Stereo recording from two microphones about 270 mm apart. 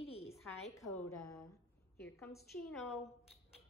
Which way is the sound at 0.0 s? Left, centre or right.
Left.